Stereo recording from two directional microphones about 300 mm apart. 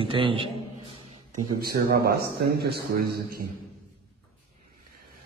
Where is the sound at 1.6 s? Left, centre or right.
Right.